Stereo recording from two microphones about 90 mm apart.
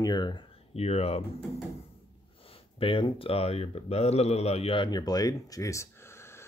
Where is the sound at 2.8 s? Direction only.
75° left (ahead or behind); by 3.8 s 90° left.